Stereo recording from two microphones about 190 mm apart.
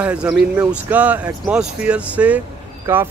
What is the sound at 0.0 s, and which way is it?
Speech, 5° right (ahead or behind).